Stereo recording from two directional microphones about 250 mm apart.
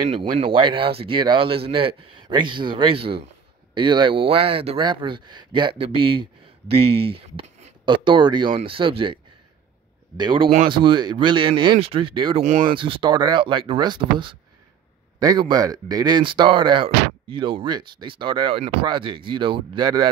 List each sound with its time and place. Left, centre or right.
0.1 s speech: right